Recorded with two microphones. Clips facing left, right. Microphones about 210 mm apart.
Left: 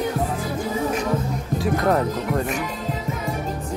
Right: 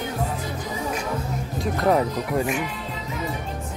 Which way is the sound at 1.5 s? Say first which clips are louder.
Left 1 dB; centre (ahead or behind).